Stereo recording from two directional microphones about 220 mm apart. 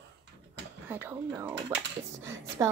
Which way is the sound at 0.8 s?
10° right (ahead or behind).